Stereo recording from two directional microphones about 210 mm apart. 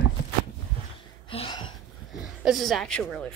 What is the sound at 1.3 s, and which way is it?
Hiccup, 25° left (ahead or behind).